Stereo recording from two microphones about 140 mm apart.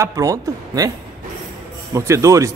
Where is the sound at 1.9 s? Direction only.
20° right (ahead or behind).